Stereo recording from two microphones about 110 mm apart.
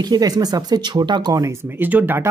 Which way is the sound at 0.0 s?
35° right (ahead or behind).